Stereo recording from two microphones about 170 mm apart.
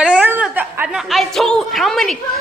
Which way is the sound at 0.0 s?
10° right (ahead or behind).